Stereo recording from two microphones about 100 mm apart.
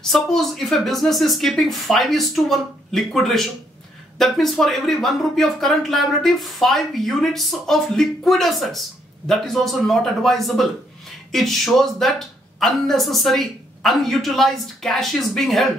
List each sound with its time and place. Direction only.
0.0 s speech: 5° left (ahead or behind)